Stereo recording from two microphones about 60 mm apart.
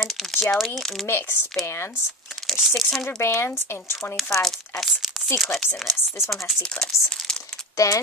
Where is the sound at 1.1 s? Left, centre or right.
Left.